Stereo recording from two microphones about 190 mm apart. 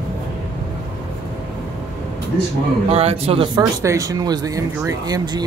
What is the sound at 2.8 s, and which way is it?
Speech, 30° right (ahead or behind).